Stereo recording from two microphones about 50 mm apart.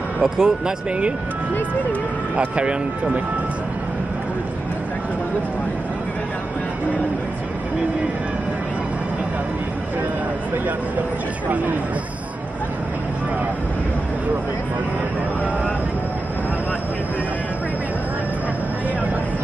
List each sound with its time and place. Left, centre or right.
0.2 s speech: centre
2.3 s speech: right